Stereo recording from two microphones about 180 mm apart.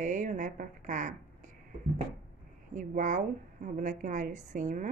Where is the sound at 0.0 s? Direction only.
45° right (ahead or behind).